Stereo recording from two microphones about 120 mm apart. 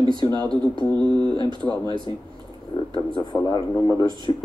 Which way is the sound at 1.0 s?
40° right (ahead or behind).